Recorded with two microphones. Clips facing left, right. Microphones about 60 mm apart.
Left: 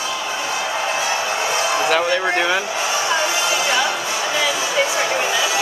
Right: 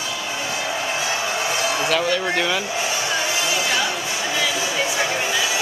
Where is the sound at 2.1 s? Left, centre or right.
Centre.